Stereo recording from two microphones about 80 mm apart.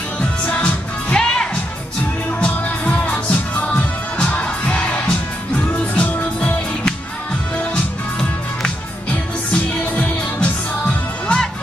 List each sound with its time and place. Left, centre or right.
0.2 s music: centre